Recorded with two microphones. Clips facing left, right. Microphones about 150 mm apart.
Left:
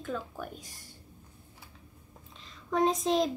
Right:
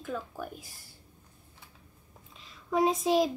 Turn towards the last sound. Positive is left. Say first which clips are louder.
# right 1 dB
turn(degrees=-5)  # may be behind; listen again after turning